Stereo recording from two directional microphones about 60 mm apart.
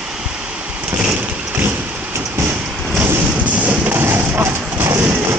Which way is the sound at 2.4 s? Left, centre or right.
Right.